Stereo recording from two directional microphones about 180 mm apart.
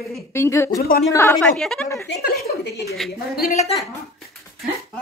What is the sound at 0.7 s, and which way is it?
Speech, 60° left (ahead or behind).